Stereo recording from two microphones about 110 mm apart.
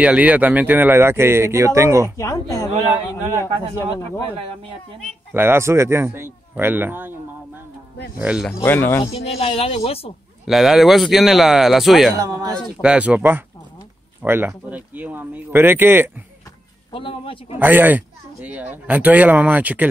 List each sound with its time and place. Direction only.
0.0 s speech: 10° right (ahead or behind)
2.1 s speech: 30° left (ahead or behind)
5.3 s speech: 20° right (ahead or behind)
8.2 s speech: 10° right (ahead or behind)
8.6 s speech: 20° left (ahead or behind)
9.0 s speech: 65° left (ahead or behind)
10.4 s speech: centre (ahead or behind)
12.2 s speech: 35° right (ahead or behind)
12.8 s speech: 10° right (ahead or behind)
16.9 s a man's voice: 55° left (ahead or behind)
17.6 s speech: 15° right (ahead or behind)